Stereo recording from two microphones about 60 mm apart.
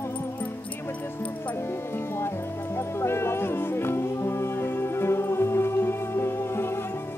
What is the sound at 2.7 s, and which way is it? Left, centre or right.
Music, left.